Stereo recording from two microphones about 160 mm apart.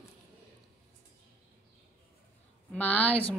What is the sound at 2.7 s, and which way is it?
Speech, 10° left (ahead or behind).